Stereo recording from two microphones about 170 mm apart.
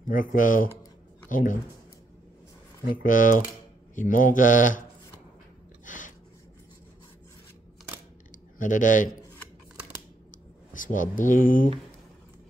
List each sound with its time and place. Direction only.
0.1 s speech: 55° left (ahead or behind)
2.9 s speech: 50° left (ahead or behind)
5.9 s a sound: 50° left (ahead or behind)
8.5 s speech: 50° left (ahead or behind)
10.7 s speech: 50° left (ahead or behind)